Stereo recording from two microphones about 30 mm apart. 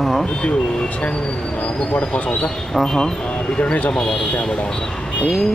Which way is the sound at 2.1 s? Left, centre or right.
Left.